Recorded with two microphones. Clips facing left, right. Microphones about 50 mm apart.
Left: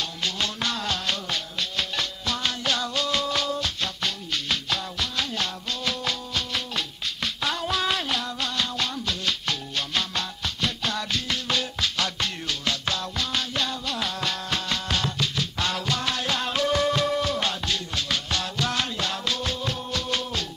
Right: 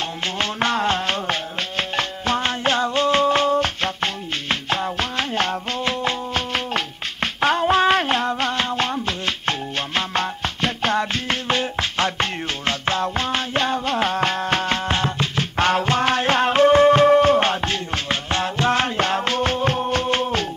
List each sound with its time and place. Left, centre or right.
0.0 s music: right